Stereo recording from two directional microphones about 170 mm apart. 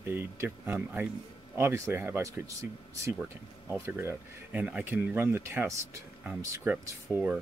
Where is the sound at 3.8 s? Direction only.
15° right (ahead or behind).